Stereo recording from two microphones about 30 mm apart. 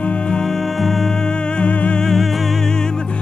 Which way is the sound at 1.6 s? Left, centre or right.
Left.